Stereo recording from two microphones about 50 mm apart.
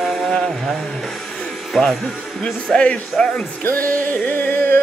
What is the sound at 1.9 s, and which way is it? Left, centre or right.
Speech, centre.